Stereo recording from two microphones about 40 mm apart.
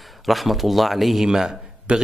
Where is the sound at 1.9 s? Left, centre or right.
Right.